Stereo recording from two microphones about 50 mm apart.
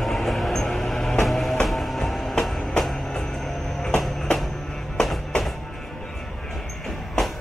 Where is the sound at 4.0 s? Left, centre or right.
Centre.